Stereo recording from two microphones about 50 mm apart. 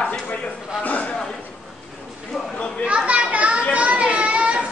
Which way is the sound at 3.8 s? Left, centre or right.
Right.